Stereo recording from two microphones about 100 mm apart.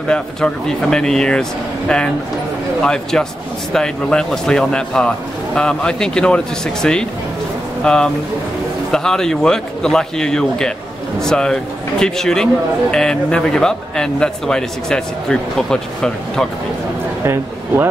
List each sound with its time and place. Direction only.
0.1 s a man's voice: 5° left (ahead or behind)
2.8 s a man's voice: 5° left (ahead or behind)
17.2 s a man's voice: 25° right (ahead or behind)